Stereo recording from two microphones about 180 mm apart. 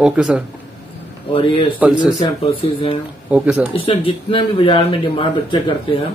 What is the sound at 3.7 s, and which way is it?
Speech, 30° left (ahead or behind).